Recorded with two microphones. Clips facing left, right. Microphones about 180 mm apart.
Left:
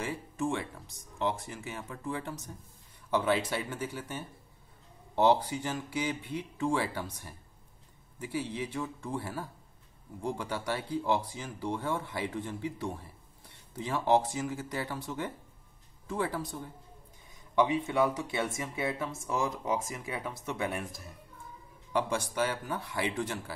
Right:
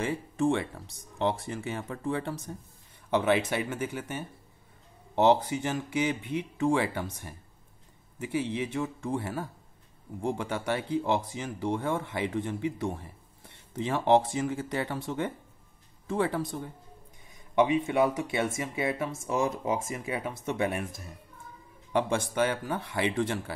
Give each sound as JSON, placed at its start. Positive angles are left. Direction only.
{"t": 0.0, "sound": "speech", "side_deg": -30}